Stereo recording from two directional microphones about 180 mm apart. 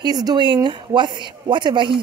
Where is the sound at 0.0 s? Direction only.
20° right (ahead or behind).